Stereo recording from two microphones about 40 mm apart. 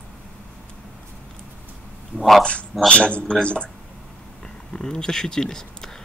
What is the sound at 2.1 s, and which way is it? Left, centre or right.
Speech, left.